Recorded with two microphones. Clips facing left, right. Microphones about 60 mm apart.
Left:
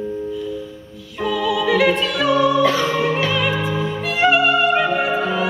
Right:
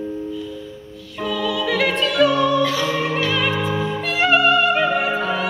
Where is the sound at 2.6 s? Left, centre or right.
Left.